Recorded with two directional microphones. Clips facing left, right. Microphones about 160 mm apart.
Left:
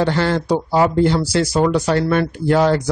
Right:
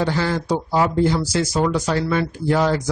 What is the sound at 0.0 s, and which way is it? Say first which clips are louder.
Speech: left 4 dB; 65° left (ahead or behind).